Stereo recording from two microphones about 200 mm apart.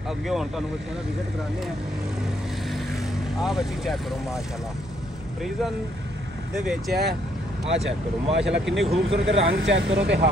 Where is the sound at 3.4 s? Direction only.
Centre (ahead or behind).